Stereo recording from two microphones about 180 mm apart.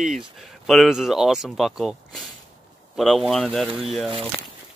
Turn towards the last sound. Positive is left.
turn(degrees=0)  # may be behind; listen again after turning